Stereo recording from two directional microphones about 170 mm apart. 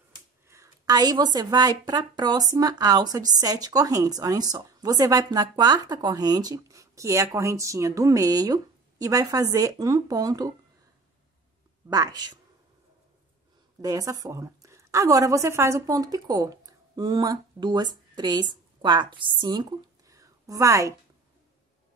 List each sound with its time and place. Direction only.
0.5 s a woman's voice: 20° right (ahead or behind)
11.9 s a woman's voice: 20° right (ahead or behind)
13.7 s a woman's voice: 20° right (ahead or behind)